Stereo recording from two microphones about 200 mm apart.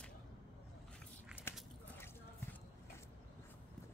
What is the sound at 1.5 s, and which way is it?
Biting, 10° left (ahead or behind).